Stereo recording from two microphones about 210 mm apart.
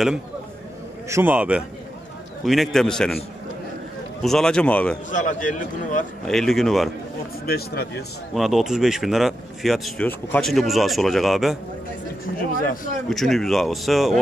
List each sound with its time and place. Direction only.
1.0 s a man's voice: 10° right (ahead or behind)
4.2 s speech: centre (ahead or behind)
5.1 s a man's voice: 35° left (ahead or behind)
6.2 s speech: centre (ahead or behind)
7.4 s speech: 45° left (ahead or behind)
8.4 s speech: centre (ahead or behind)
13.1 s speech: centre (ahead or behind)